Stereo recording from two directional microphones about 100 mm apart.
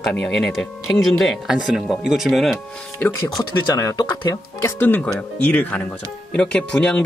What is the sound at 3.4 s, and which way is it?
Speech, 35° left (ahead or behind).